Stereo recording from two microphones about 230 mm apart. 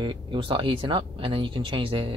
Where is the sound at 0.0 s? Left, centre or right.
Right.